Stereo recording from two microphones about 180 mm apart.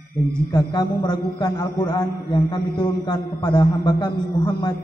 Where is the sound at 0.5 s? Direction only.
25° left (ahead or behind).